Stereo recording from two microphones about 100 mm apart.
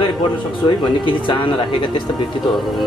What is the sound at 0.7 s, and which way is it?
Speech, 55° left (ahead or behind).